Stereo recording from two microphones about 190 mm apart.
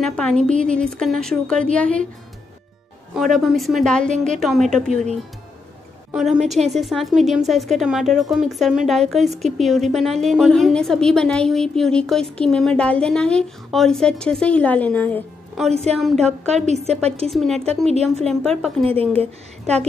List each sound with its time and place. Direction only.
0.0 s a woman's voice: 5° left (ahead or behind)
3.2 s a woman's voice: centre (ahead or behind)
6.1 s a woman's voice: centre (ahead or behind)
15.7 s speech: 35° right (ahead or behind)
16.0 s a woman's voice: centre (ahead or behind)
16.4 s speech: 35° right (ahead or behind)
17.3 s a woman's voice: centre (ahead or behind)
17.6 s speech: 35° right (ahead or behind)